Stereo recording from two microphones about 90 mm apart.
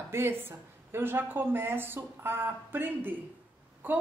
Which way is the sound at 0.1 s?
25° right (ahead or behind).